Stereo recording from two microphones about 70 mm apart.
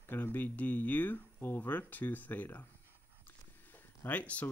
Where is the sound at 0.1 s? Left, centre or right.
Left.